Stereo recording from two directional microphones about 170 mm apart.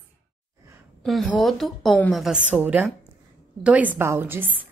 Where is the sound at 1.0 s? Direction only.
Centre (ahead or behind).